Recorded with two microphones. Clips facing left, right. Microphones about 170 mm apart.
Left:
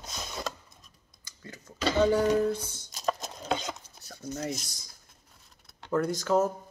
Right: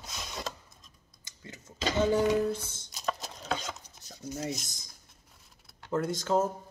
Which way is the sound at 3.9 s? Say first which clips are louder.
Left 2 dB; 15° right (ahead or behind).